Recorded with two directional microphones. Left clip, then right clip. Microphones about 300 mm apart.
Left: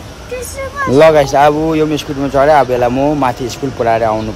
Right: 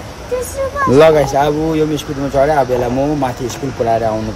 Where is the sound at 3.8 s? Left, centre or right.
Centre.